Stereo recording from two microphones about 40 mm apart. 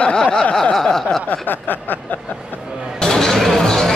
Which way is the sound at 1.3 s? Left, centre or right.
Left.